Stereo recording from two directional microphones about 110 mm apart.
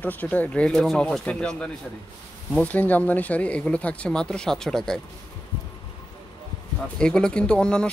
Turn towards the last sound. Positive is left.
turn(degrees=10)  # may be behind; listen again after turning